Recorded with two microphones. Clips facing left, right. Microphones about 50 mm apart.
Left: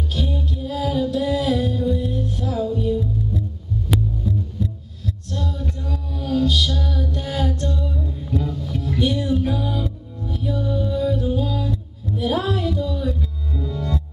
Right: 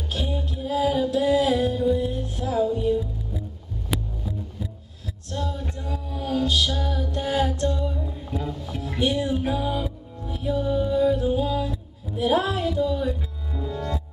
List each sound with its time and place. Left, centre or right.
0.1 s music: centre
5.3 s music: centre